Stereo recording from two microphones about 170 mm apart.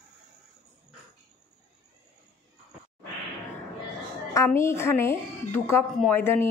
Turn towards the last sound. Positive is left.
turn(degrees=10)  # may be behind; listen again after turning